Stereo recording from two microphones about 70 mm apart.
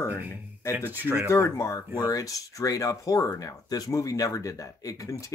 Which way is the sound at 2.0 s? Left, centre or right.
Left.